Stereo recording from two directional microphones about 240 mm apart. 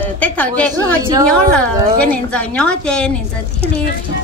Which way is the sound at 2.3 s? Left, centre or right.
Centre.